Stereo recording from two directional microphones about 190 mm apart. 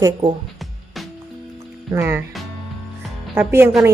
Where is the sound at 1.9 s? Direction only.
10° right (ahead or behind).